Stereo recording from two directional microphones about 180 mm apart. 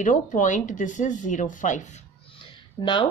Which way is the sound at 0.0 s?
45° left (ahead or behind).